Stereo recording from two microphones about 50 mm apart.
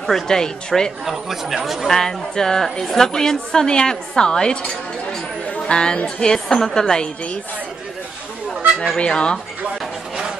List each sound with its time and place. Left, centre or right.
0.0 s a woman's voice: centre
1.0 s speech: centre
1.9 s a woman's voice: centre
5.7 s a woman's voice: centre
6.0 s a woman's voice: centre
8.9 s a woman's voice: centre